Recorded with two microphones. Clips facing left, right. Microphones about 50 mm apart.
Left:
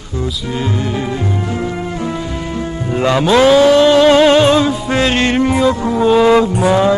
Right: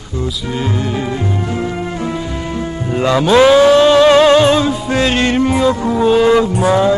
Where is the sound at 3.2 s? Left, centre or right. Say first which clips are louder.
Right 1 dB; right.